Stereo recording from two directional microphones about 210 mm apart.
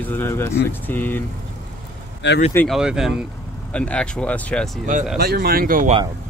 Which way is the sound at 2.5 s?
Centre (ahead or behind).